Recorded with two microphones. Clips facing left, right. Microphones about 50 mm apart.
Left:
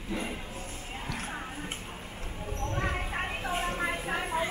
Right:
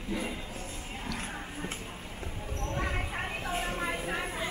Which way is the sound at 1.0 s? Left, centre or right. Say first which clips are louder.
Even; centre.